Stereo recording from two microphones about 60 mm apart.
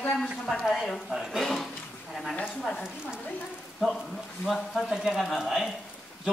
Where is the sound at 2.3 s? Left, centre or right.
Left.